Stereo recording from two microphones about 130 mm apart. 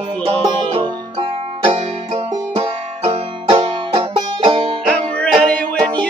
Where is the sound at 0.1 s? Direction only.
45° right (ahead or behind).